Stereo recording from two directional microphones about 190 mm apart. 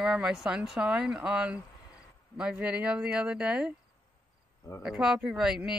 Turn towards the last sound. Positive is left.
turn(degrees=-5)  # may be behind; listen again after turning